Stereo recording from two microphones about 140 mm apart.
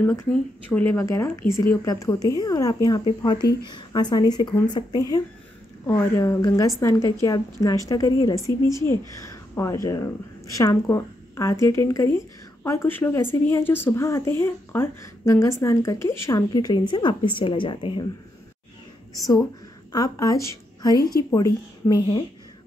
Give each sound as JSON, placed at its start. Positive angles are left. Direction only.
{"t": 0.0, "sound": "a woman's voice", "side_deg": 15}
{"t": 5.9, "sound": "a woman's voice", "side_deg": 20}
{"t": 19.1, "sound": "a woman's voice", "side_deg": 25}